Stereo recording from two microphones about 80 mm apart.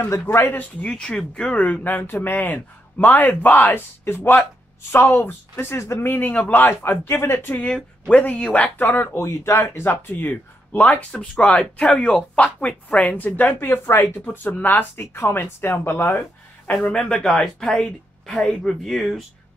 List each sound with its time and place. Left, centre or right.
0.0 s a man's voice: left
16.8 s speech: centre